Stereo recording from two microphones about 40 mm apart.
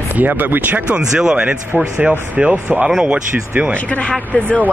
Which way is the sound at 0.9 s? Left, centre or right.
Right.